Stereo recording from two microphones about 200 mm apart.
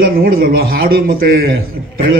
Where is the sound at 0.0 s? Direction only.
50° right (ahead or behind).